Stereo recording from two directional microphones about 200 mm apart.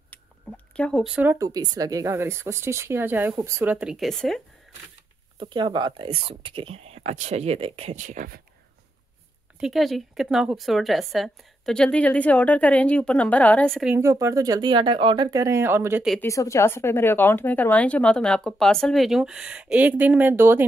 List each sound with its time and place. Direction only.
0.1 s speech: 5° left (ahead or behind)
5.4 s speech: 25° right (ahead or behind); by 8.4 s 40° right (ahead or behind)
9.6 s speech: centre (ahead or behind)
13.9 s speech: 15° right (ahead or behind)
16.3 s speech: 15° left (ahead or behind); by 20.6 s 10° right (ahead or behind)